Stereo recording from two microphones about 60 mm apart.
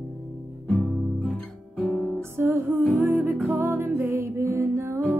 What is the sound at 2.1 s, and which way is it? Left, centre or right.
Music, right.